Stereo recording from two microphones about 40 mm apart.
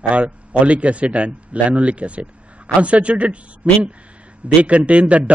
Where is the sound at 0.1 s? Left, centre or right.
Right.